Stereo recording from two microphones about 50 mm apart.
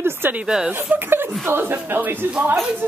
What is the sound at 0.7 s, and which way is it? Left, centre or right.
Speech, right.